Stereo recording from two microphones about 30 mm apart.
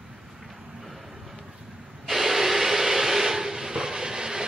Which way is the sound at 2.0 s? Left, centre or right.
Centre.